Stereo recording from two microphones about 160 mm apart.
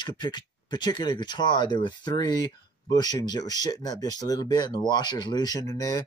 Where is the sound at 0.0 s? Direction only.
30° left (ahead or behind).